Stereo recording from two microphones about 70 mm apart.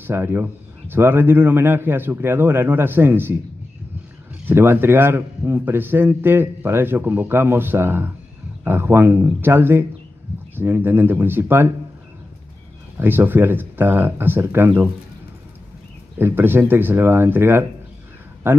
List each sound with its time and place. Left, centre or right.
0.0 s a man's voice: right
13.0 s speech: right
16.2 s a man's voice: right